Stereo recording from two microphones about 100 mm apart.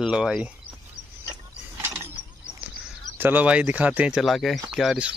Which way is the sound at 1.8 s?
25° right (ahead or behind).